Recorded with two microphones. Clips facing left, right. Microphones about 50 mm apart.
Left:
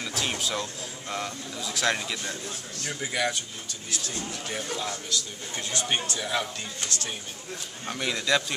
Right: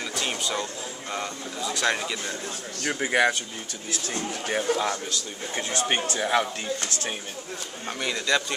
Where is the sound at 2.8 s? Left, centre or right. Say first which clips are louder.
Right 7 dB; right.